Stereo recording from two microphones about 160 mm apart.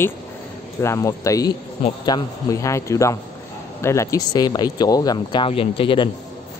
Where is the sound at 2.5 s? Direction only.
20° left (ahead or behind).